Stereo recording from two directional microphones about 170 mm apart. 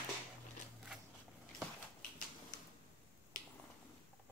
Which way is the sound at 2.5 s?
50° left (ahead or behind).